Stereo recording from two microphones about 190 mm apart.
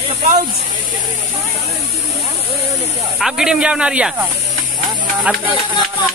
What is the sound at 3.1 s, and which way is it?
Speech, 5° right (ahead or behind).